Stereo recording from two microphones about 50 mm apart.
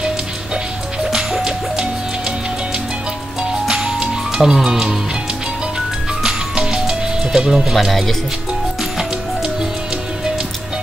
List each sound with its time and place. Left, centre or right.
1.1 s music: centre
3.6 s music: centre
6.2 s music: centre
7.7 s speech: centre